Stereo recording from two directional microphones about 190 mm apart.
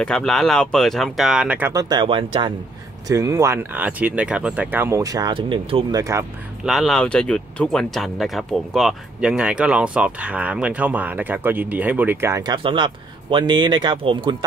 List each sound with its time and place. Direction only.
0.0 s speech: 5° left (ahead or behind)
1.7 s speech: 20° right (ahead or behind)
3.1 s speech: 15° right (ahead or behind)
6.6 s speech: centre (ahead or behind); by 14.3 s 25° right (ahead or behind)